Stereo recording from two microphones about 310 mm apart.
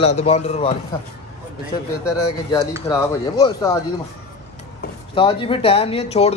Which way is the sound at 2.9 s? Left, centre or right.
Centre.